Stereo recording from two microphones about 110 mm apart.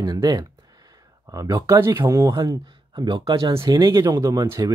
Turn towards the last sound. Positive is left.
turn(degrees=-35)  # may be behind; listen again after turning